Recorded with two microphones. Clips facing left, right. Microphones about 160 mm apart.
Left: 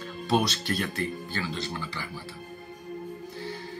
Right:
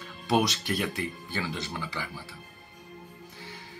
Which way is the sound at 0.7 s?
15° right (ahead or behind).